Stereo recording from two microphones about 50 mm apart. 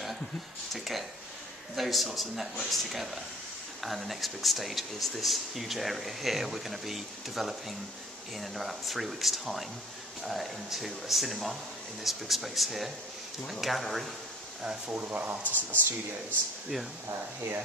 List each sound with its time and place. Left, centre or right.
0.7 s speech: centre
14.9 s speech: right
15.4 s speech: left